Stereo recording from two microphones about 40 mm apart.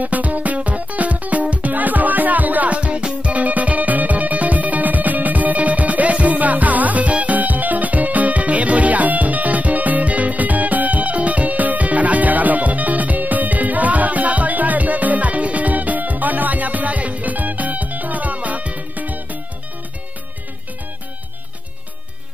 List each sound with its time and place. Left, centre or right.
0.0 s music: right
3.3 s music: right